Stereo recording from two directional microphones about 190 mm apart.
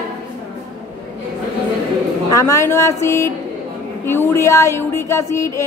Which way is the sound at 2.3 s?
15° left (ahead or behind).